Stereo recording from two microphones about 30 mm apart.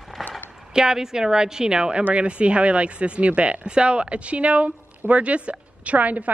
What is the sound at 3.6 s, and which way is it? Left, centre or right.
Speech, right.